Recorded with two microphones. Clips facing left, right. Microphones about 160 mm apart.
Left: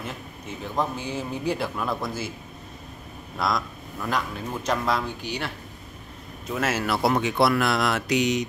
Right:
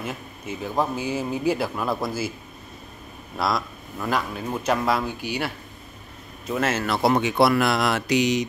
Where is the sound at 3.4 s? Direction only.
5° right (ahead or behind).